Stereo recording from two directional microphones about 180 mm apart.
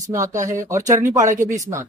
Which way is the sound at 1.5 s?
15° right (ahead or behind).